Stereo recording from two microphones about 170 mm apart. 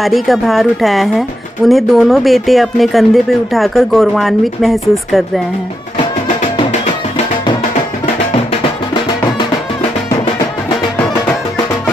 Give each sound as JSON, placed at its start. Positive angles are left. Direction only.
{"t": 0.0, "sound": "speech", "side_deg": 0}